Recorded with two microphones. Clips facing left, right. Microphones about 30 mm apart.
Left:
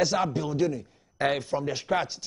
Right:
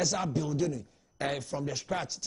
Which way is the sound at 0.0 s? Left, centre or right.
Left.